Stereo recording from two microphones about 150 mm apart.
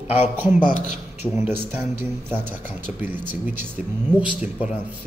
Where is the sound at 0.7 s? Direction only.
80° right.